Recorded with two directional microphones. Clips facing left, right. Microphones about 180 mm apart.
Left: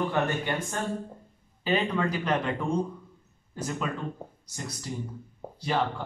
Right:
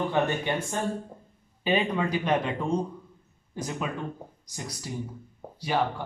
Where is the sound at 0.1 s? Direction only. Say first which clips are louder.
Right 2 dB; 15° right (ahead or behind).